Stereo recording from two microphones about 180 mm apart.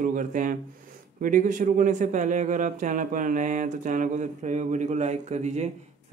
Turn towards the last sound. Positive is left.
turn(degrees=-40)  # may be behind; listen again after turning